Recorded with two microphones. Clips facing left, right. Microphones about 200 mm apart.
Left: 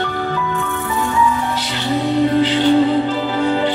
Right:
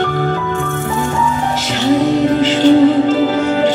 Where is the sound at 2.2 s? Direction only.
90° right.